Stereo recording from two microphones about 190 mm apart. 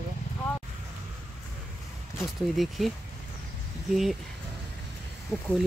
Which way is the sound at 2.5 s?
Centre (ahead or behind).